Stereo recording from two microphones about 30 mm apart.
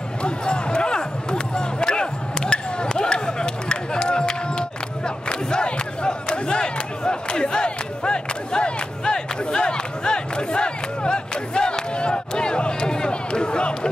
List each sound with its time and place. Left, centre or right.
0.2 s basketball bounce: left
9.0 s battle cry: left